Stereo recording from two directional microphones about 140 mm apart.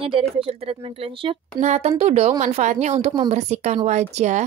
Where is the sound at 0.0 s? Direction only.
40° right (ahead or behind).